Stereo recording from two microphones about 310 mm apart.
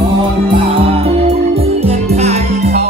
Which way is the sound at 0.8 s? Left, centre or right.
Centre.